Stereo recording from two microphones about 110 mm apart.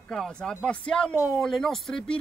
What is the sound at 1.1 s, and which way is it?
Speech, 20° right (ahead or behind).